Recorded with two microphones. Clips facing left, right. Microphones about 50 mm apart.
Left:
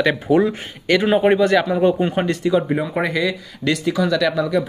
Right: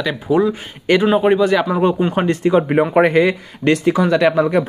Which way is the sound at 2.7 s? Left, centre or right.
Right.